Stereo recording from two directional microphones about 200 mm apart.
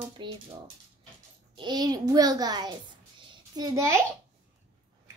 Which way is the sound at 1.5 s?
20° right (ahead or behind).